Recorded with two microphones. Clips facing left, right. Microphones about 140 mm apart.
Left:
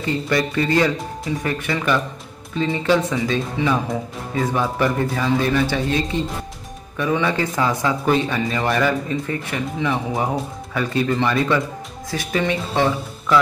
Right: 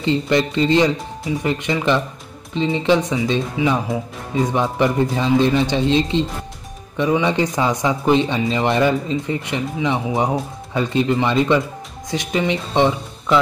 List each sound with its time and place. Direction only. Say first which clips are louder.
0.0 s speech: right 3 dB; 25° right (ahead or behind)